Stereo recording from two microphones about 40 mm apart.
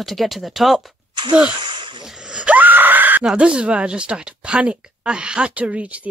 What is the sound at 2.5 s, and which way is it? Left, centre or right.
Screaming, right.